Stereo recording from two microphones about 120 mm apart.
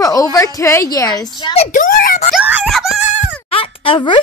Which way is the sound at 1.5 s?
75° left (ahead or behind).